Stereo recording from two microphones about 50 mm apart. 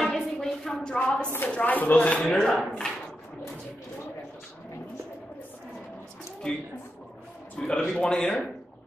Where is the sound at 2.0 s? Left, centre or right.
Left.